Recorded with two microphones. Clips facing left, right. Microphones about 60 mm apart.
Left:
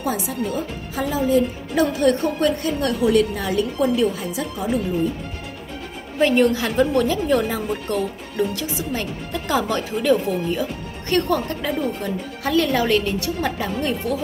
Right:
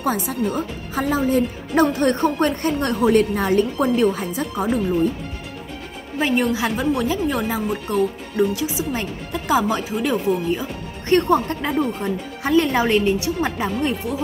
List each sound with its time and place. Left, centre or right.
0.0 s a woman's voice: right
6.1 s speech: centre